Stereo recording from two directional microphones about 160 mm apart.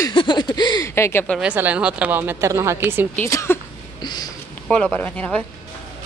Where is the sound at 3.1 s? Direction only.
15° left (ahead or behind).